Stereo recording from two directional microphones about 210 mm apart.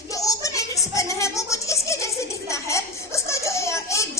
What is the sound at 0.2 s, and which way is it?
Music, 15° left (ahead or behind).